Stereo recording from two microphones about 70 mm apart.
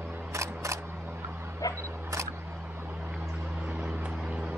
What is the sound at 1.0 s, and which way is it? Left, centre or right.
Dog, right.